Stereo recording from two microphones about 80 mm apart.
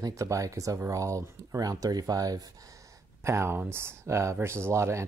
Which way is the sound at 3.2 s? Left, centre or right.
Right.